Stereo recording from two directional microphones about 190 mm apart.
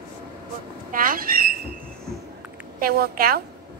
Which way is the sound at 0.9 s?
50° right (ahead or behind).